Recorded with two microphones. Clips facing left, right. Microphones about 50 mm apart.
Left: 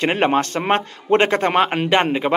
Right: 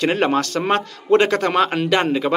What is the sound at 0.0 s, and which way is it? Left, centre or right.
Speech, left.